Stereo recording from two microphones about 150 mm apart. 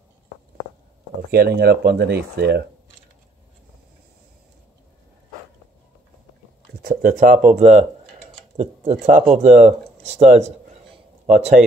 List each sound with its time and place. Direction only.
1.3 s speech: 90° right
6.8 s speech: 70° right (ahead or behind); by 11.6 s 50° right (ahead or behind)